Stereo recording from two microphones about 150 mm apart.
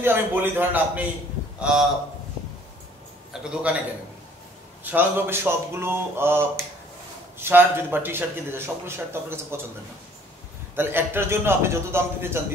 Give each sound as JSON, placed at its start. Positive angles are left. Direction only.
{"t": 0.0, "sound": "a man's voice", "side_deg": -15}
{"t": 3.3, "sound": "a man's voice", "side_deg": 0}
{"t": 4.8, "sound": "a man's voice", "side_deg": -15}
{"t": 10.8, "sound": "a man's voice", "side_deg": -15}